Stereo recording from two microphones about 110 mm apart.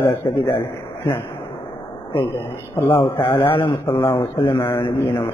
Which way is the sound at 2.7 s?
20° left (ahead or behind).